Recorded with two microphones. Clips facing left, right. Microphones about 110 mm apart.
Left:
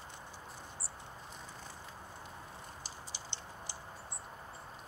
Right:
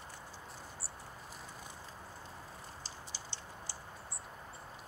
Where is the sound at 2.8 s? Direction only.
20° left (ahead or behind).